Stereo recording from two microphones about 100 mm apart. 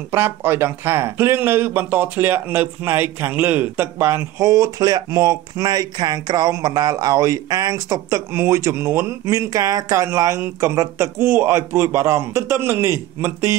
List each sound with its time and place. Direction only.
0.1 s a man's voice: 25° right (ahead or behind)